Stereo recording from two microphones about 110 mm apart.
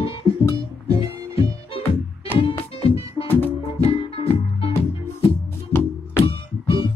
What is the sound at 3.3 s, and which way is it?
Music, 15° left (ahead or behind).